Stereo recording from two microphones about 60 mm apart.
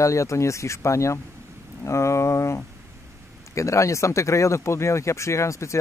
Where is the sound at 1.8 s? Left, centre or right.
Left.